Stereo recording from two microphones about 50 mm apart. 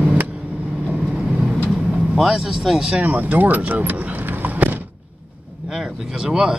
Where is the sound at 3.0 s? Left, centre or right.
Right.